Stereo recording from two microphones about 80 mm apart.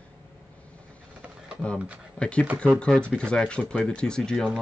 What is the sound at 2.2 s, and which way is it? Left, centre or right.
Speech, centre.